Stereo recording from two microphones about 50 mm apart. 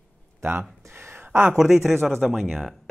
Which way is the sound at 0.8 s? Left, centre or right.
Right.